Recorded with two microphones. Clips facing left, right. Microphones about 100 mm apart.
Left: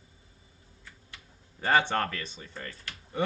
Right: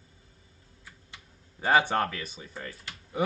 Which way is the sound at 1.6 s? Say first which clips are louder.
Right 2 dB; 10° right (ahead or behind).